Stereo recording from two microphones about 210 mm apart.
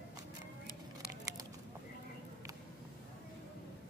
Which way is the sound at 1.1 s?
15° right (ahead or behind).